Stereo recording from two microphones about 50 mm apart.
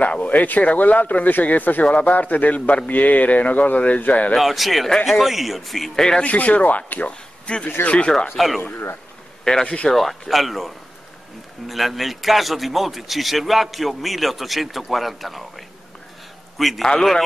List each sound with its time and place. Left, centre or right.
0.0 s speech: left
4.4 s a man's voice: centre
5.9 s a man's voice: centre
6.2 s speech: left
7.4 s speech: left
8.4 s a man's voice: centre
9.4 s a man's voice: centre